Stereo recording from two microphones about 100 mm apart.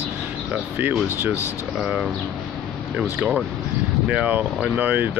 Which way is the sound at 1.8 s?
5° right (ahead or behind).